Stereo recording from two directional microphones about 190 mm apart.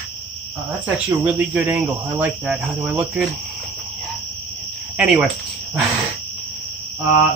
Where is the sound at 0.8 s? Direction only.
5° right (ahead or behind).